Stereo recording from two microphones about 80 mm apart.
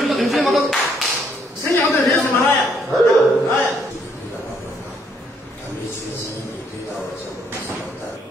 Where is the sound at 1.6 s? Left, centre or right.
Left.